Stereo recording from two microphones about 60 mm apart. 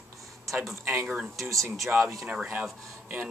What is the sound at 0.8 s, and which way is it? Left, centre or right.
Speech, right.